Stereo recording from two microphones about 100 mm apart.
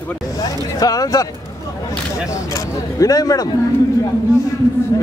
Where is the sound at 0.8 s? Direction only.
35° left (ahead or behind).